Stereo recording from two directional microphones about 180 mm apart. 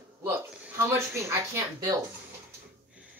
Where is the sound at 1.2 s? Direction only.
20° right (ahead or behind).